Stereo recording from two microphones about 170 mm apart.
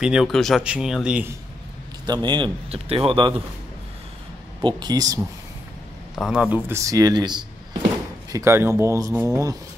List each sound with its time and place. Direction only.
0.0 s speech: 5° right (ahead or behind)
2.0 s speech: 25° right (ahead or behind)
4.6 s speech: 25° right (ahead or behind)
6.1 s speech: centre (ahead or behind)
6.7 s speech: 20° right (ahead or behind)